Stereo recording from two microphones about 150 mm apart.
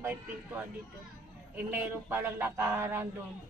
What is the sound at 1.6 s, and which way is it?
Speech, 15° right (ahead or behind).